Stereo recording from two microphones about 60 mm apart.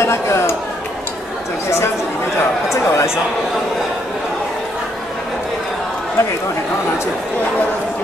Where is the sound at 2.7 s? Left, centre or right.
Left.